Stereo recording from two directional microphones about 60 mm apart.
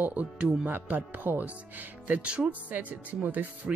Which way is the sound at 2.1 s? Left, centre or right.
Centre.